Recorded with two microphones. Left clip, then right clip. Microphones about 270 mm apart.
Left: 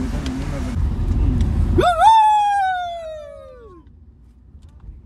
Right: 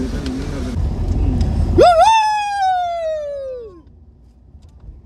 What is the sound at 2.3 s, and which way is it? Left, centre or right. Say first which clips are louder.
Police car: left 3 dB; right.